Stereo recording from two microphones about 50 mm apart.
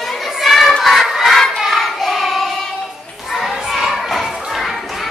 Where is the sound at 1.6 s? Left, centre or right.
Centre.